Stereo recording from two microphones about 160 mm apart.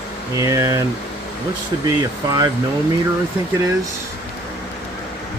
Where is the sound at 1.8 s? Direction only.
20° right (ahead or behind).